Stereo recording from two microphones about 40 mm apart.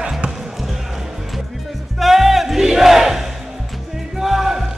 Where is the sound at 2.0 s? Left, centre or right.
Centre.